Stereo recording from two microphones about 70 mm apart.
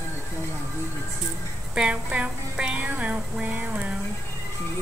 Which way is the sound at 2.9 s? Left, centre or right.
Right.